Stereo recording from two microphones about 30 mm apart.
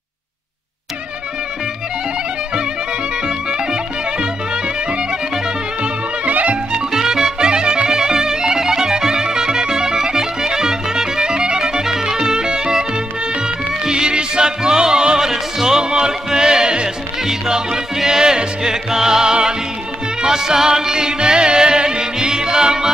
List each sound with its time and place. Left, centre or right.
3.3 s clarinet: right
6.3 s music: right
6.9 s music: centre